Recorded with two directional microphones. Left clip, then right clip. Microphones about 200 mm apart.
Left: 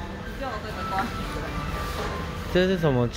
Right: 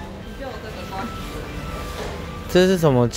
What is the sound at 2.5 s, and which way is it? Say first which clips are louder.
Speech: right 6 dB; 40° right (ahead or behind).